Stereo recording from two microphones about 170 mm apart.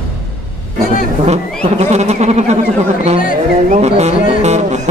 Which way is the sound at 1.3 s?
40° right (ahead or behind).